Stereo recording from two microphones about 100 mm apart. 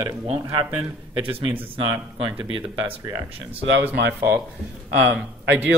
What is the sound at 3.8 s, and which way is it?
Speech, 20° right (ahead or behind).